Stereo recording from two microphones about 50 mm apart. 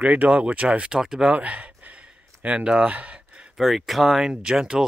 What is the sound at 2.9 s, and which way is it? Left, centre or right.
Gasp, right.